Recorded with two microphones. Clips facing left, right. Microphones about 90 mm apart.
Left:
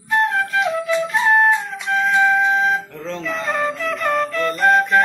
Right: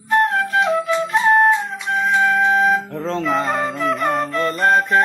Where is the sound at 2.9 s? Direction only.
40° right (ahead or behind).